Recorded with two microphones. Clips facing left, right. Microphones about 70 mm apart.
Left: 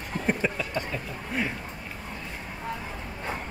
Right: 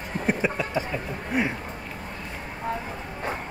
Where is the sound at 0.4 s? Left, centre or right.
Centre.